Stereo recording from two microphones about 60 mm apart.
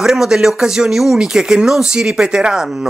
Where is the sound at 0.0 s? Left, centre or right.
Centre.